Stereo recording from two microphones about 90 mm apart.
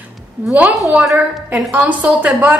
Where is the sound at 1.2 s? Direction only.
15° right (ahead or behind).